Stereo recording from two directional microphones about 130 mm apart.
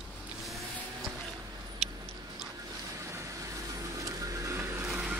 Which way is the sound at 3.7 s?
25° right (ahead or behind).